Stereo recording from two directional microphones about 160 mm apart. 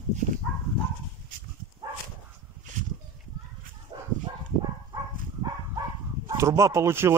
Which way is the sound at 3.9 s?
25° right (ahead or behind).